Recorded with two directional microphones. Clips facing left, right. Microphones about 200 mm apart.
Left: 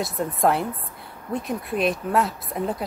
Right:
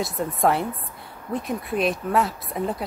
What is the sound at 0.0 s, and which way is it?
Speech, centre (ahead or behind).